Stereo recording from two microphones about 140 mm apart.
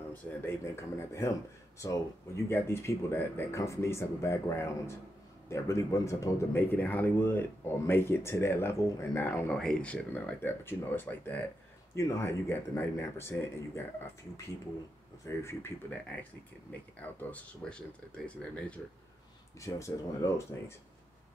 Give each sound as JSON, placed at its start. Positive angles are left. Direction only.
{"t": 0.1, "sound": "speech", "side_deg": 15}
{"t": 15.2, "sound": "speech", "side_deg": 20}
{"t": 17.0, "sound": "speech", "side_deg": 10}
{"t": 19.6, "sound": "speech", "side_deg": 20}